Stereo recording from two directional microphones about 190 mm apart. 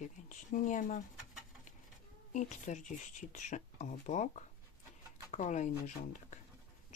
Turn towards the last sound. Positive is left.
turn(degrees=40)  # may be behind; listen again after turning